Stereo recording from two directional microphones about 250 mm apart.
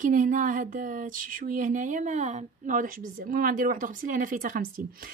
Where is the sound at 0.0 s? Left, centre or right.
Right.